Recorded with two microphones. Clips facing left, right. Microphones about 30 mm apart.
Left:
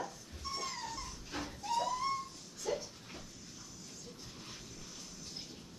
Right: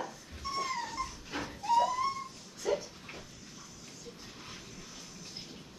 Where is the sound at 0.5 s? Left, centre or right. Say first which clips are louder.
Right 7 dB; centre.